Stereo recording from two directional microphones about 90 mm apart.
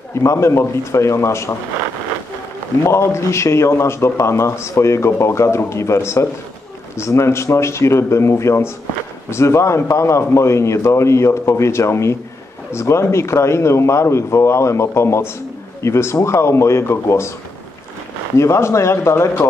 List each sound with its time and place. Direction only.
0.1 s a man's voice: 35° left (ahead or behind)
2.8 s a man's voice: 30° left (ahead or behind)
18.4 s a man's voice: 30° left (ahead or behind)